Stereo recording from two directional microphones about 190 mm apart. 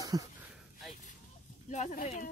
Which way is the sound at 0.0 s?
20° right (ahead or behind).